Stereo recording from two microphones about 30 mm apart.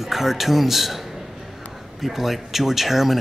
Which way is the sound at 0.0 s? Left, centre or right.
Centre.